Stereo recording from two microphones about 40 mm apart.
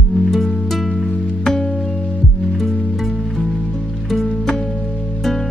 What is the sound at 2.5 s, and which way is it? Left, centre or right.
Music, centre.